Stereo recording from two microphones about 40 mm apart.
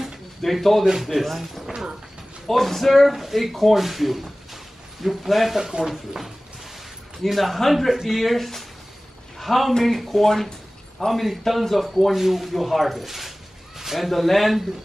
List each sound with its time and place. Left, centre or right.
0.4 s a man's voice: centre
5.6 s a man's voice: centre